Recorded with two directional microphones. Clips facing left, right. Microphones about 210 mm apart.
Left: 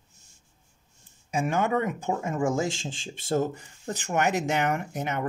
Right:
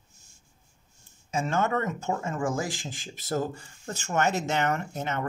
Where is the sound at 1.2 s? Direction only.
15° left (ahead or behind).